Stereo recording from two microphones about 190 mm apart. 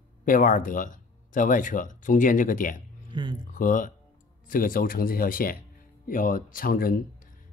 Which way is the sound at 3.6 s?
45° left (ahead or behind).